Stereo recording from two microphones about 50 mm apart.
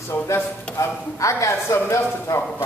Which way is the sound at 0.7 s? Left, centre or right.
Left.